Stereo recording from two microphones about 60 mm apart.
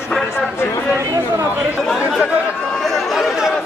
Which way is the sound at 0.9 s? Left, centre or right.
Right.